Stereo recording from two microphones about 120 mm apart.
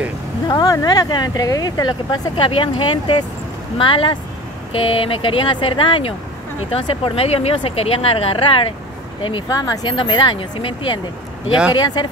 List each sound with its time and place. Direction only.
0.5 s speech: 30° left (ahead or behind)
2.3 s speech: 45° left (ahead or behind)
9.5 s speech: 35° left (ahead or behind)